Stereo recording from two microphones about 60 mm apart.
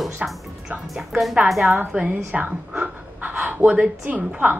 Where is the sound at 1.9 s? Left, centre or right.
Right.